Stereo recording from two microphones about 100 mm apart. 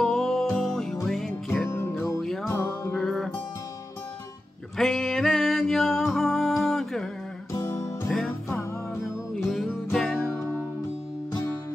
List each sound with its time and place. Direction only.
0.0 s music: 5° left (ahead or behind)
1.6 s music: 25° left (ahead or behind)
2.0 s music: centre (ahead or behind)
2.4 s music: 25° left (ahead or behind)
2.9 s music: 5° left (ahead or behind)
4.7 s music: 5° left (ahead or behind)
8.1 s music: 5° left (ahead or behind)